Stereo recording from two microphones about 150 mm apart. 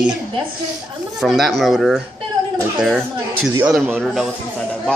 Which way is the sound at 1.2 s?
Centre (ahead or behind).